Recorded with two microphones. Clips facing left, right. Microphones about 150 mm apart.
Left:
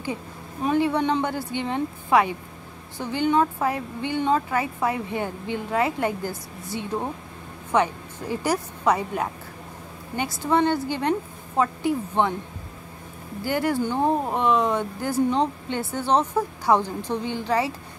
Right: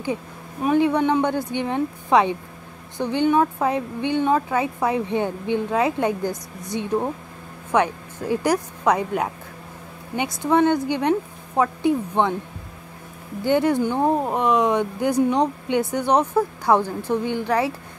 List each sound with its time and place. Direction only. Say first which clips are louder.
0.7 s speech: right 3 dB; 15° right (ahead or behind)
10.4 s speech: right 3 dB; 15° right (ahead or behind)
13.4 s speech: right 5 dB; 20° right (ahead or behind)